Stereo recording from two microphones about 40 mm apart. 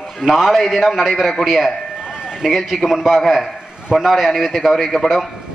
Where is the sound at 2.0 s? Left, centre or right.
Centre.